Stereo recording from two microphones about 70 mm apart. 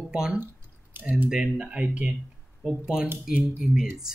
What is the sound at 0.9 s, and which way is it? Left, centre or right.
Squish, right.